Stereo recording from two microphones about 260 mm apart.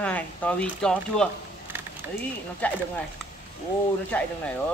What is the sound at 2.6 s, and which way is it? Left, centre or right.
Speech, centre.